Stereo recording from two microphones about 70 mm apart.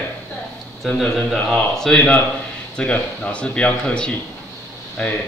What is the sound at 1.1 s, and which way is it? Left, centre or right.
A man's voice, centre.